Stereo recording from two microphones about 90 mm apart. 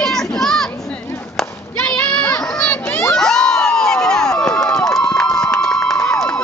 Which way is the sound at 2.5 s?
10° left (ahead or behind).